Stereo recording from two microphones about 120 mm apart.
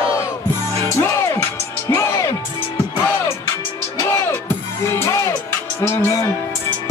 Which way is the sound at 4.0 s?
30° left (ahead or behind).